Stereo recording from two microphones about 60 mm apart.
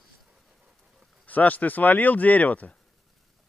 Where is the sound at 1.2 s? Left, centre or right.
Left.